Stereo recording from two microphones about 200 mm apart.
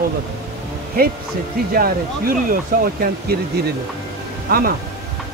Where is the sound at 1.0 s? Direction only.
50° right (ahead or behind).